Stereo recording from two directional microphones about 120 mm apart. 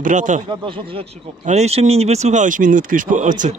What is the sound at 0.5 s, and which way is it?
Speech, 45° right (ahead or behind).